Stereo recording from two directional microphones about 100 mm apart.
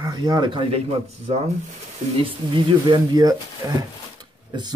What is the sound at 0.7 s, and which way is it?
Speech, 90° right.